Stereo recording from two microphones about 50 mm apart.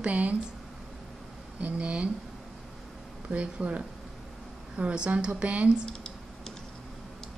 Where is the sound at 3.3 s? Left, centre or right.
Right.